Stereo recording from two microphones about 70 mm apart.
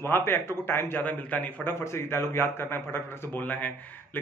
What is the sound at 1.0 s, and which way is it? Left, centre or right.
Speech, left.